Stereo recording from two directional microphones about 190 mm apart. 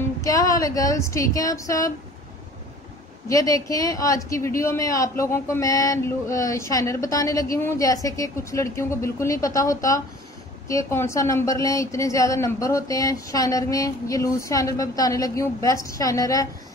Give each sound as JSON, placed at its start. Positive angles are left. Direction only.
{"t": 0.2, "sound": "a woman's voice", "side_deg": 20}
{"t": 3.3, "sound": "a woman's voice", "side_deg": 15}